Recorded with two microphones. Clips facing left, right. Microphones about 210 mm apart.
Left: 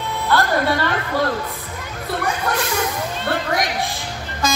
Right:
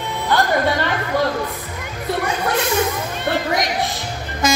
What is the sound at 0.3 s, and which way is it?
Speech, 15° right (ahead or behind).